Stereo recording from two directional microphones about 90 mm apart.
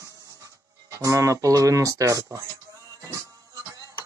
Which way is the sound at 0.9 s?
35° right (ahead or behind).